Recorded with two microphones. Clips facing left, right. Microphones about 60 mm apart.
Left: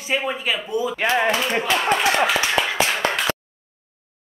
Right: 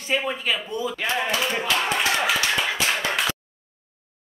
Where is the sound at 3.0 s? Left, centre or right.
Left.